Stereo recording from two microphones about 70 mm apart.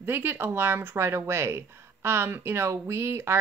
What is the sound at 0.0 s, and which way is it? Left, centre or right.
Speech, right.